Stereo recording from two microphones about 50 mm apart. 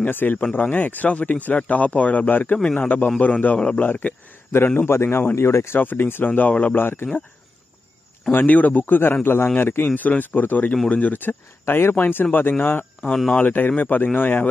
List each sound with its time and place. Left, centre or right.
0.0 s speech: left
2.5 s a man's voice: left
3.2 s speech: left
4.5 s a man's voice: left
5.8 s speech: left
6.8 s a man's voice: left
8.3 s a man's voice: left
9.8 s speech: left
11.6 s speech: left
11.9 s speech: left